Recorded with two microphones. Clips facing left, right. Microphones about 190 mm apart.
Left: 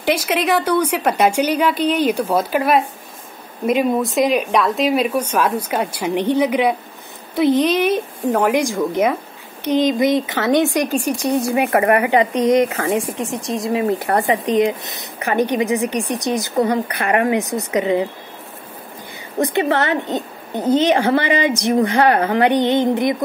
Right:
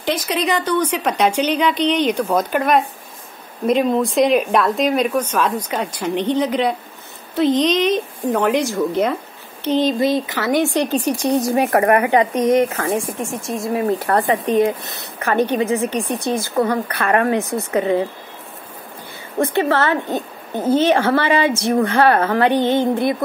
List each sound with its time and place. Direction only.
0.0 s speech: 10° left (ahead or behind)
19.4 s speech: 15° left (ahead or behind)